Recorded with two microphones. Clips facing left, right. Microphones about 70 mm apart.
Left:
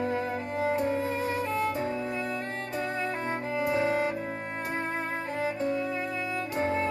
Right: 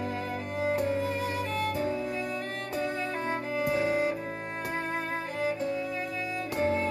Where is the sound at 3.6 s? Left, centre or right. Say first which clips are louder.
Left 1 dB; left.